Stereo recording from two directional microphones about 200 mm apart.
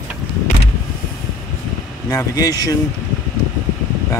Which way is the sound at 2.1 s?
15° left (ahead or behind).